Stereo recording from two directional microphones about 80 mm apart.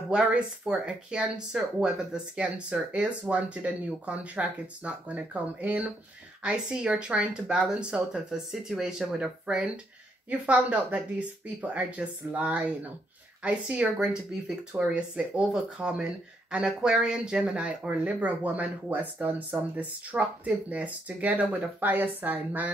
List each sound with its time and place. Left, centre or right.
0.1 s speech: centre